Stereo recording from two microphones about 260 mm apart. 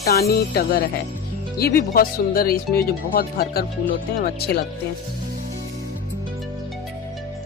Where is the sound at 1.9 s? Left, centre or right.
Left.